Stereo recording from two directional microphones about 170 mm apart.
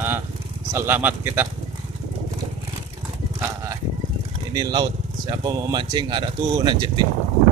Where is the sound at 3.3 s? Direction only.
15° right (ahead or behind).